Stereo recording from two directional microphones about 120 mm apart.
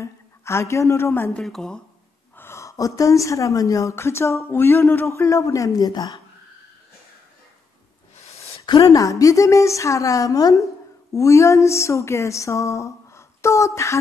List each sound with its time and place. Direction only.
0.0 s a woman's voice: 20° left (ahead or behind)
1.4 s speech: 5° left (ahead or behind)
2.3 s a woman's voice: 20° left (ahead or behind)
8.6 s a woman's voice: 30° left (ahead or behind)